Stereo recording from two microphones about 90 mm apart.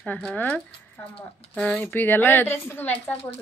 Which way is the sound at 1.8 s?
25° left (ahead or behind).